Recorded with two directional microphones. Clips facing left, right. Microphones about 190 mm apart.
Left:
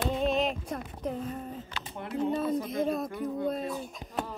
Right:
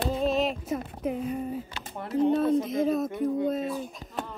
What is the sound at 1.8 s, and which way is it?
Speech, 40° right (ahead or behind).